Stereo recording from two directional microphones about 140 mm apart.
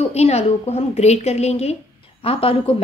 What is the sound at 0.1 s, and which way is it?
A woman's voice, 50° left (ahead or behind).